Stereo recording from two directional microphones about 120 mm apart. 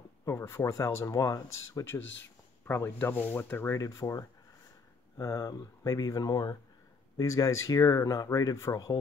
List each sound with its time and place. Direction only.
0.2 s speech: 25° left (ahead or behind)